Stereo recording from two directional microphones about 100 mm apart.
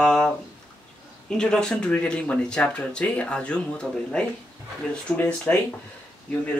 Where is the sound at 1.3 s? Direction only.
5° left (ahead or behind).